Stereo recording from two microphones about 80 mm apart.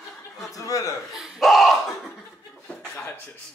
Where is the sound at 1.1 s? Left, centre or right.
Centre.